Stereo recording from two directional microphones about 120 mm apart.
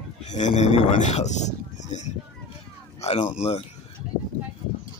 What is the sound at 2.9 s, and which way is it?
Speech, 65° left (ahead or behind).